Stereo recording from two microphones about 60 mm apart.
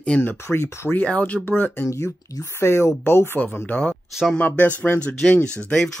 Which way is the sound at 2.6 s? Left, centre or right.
Left.